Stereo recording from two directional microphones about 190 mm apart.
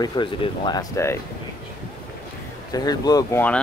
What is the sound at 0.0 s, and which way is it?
Speech, 25° left (ahead or behind).